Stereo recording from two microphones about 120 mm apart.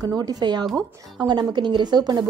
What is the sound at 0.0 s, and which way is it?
Speech, 30° right (ahead or behind).